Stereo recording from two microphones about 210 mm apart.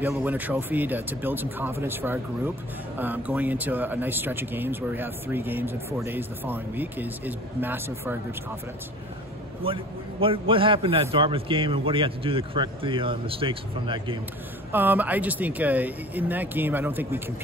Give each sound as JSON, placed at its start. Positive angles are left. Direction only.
{"t": 0.0, "sound": "speech", "side_deg": -10}
{"t": 9.6, "sound": "a man's voice", "side_deg": -25}
{"t": 14.7, "sound": "speech", "side_deg": -10}